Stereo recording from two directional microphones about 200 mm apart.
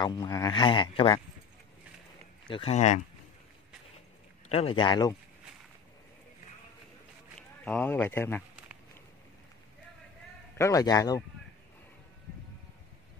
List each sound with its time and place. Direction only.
0.0 s speech: 20° left (ahead or behind)
2.4 s speech: 25° left (ahead or behind)
4.5 s speech: 25° left (ahead or behind)
7.3 s speech: 5° left (ahead or behind)
10.6 s speech: 15° left (ahead or behind)